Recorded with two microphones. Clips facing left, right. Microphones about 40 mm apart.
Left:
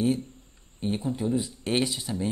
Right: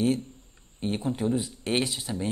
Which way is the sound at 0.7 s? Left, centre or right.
Centre.